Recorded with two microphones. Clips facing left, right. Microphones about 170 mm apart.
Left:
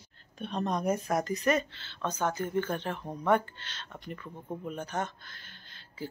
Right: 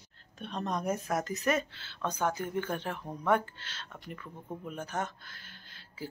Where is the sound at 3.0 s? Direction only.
15° left (ahead or behind).